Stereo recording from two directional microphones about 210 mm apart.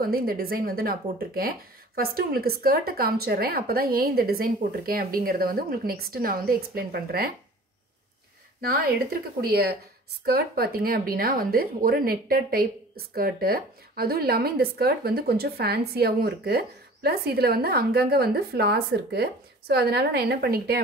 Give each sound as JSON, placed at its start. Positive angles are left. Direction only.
{"t": 0.0, "sound": "speech", "side_deg": -45}
{"t": 8.5, "sound": "speech", "side_deg": -45}